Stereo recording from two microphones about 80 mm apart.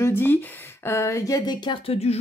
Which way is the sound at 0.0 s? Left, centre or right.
Left.